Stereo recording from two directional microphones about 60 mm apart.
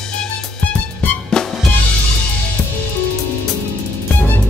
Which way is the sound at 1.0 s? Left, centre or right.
Centre.